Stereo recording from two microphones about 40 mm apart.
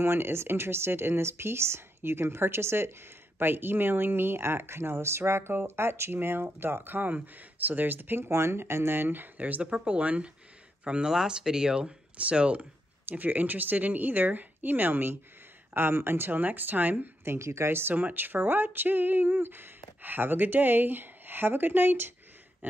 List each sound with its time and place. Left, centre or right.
0.0 s speech: right
3.3 s speech: right
6.1 s speech: right
7.2 s speech: right
9.8 s speech: right
12.2 s speech: right
13.1 s speech: right
15.7 s speech: right
17.2 s speech: right
17.9 s speech: right